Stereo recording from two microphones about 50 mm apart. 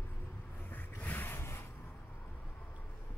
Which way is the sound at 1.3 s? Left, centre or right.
Left.